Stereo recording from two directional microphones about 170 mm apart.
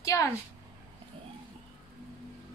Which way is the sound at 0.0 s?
20° left (ahead or behind).